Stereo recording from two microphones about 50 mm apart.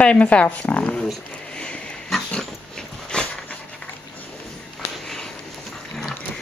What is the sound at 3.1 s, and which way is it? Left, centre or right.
Dog, centre.